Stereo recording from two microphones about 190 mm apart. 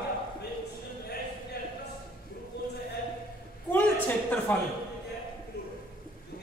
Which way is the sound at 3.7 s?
10° left (ahead or behind).